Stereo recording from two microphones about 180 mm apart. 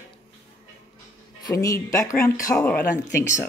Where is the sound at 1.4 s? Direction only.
20° left (ahead or behind).